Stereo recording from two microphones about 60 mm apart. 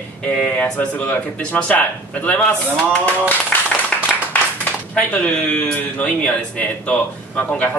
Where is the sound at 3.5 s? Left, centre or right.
Left.